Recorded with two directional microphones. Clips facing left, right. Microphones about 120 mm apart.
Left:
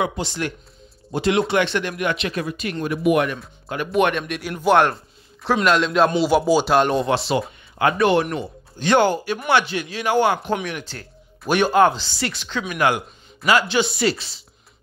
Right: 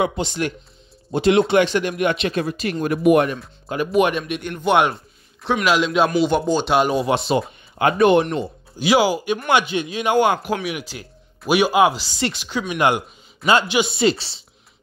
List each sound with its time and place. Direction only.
1.1 s speech: 25° right (ahead or behind)
2.9 s speech: 45° right (ahead or behind)
3.6 s speech: 25° right (ahead or behind)
3.9 s a man's voice: 5° right (ahead or behind)
7.1 s speech: 20° right (ahead or behind)
8.7 s speech: 5° right (ahead or behind)
9.5 s speech: 15° right (ahead or behind)